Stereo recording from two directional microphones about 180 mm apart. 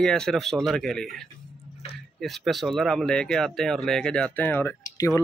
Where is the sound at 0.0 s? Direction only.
5° left (ahead or behind).